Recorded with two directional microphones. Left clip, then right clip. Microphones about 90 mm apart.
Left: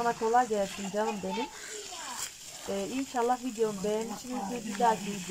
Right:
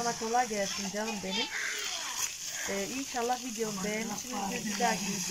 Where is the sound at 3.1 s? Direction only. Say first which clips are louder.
Left 4 dB; 5° left (ahead or behind).